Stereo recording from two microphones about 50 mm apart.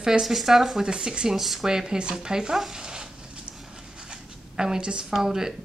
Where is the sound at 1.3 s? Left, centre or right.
Centre.